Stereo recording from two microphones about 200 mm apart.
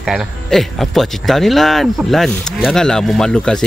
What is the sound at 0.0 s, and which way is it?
Speech, centre (ahead or behind).